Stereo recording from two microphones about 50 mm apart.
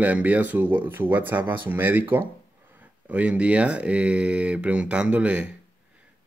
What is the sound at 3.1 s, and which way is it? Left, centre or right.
Speech, right.